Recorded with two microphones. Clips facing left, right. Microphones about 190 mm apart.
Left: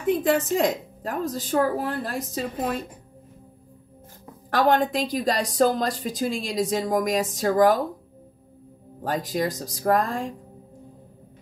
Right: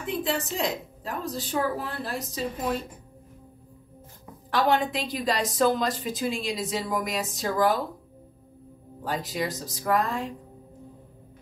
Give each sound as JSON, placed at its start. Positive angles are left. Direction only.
{"t": 0.0, "sound": "speech", "side_deg": 45}
{"t": 4.5, "sound": "speech", "side_deg": 45}
{"t": 9.0, "sound": "speech", "side_deg": 45}